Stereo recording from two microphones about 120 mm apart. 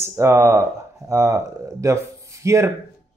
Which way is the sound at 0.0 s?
20° right (ahead or behind).